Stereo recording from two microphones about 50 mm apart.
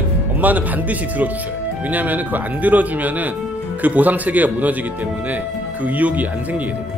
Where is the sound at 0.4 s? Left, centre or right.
Right.